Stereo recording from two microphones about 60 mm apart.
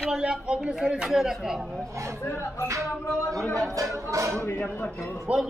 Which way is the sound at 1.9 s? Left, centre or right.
Right.